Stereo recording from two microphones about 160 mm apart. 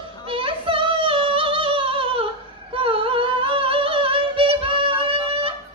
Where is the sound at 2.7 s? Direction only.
35° right (ahead or behind).